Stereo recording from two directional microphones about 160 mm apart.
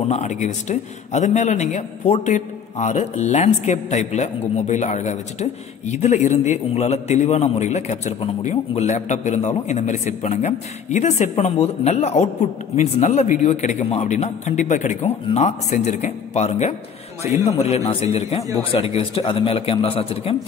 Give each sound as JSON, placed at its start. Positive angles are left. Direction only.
{"t": 0.1, "sound": "a man's voice", "side_deg": 45}